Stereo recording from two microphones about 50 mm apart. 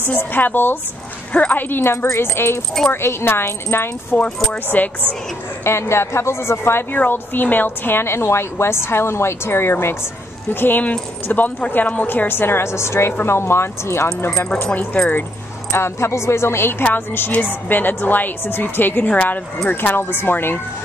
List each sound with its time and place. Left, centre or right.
0.0 s a woman's voice: left
1.3 s a woman's voice: left
1.6 s a woman's voice: left
4.6 s a woman's voice: left
5.6 s a woman's voice: left
6.9 s a woman's voice: left
12.1 s a woman's voice: left
15.0 s a woman's voice: left
15.7 s a woman's voice: left
17.3 s a woman's voice: left